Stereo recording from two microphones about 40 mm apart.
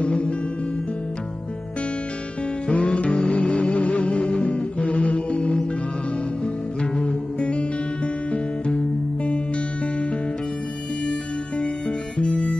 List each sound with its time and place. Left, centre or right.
0.0 s music: left
2.7 s music: left
12.2 s music: left